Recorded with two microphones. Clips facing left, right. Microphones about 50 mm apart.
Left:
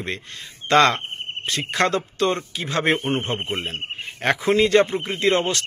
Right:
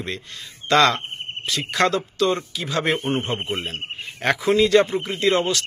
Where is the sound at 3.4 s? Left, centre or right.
Centre.